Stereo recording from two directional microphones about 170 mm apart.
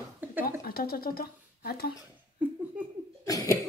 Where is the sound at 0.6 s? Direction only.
60° left (ahead or behind).